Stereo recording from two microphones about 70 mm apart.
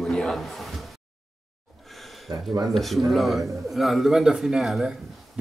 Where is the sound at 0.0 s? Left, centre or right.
Centre.